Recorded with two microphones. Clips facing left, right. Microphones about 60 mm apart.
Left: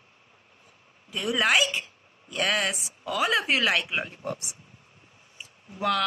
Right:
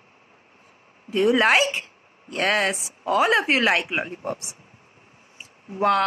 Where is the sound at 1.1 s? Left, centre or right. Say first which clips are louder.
Right 6 dB; right.